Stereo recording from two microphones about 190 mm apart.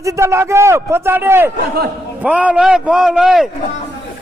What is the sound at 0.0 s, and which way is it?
A man's voice, 15° right (ahead or behind).